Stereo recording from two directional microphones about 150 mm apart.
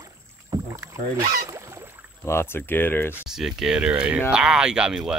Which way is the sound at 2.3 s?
15° left (ahead or behind).